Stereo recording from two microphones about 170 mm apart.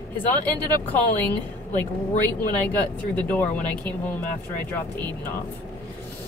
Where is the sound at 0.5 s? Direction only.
10° left (ahead or behind).